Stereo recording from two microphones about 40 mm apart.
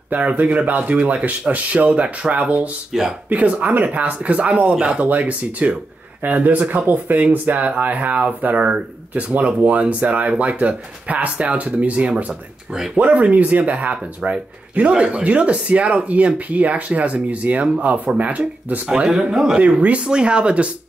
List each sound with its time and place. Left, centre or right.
0.1 s speech: right
2.9 s a man's voice: centre
3.3 s speech: right
18.9 s a man's voice: right
19.6 s speech: right
20.0 s speech: right